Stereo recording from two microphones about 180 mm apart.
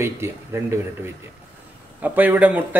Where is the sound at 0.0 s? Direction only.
15° right (ahead or behind).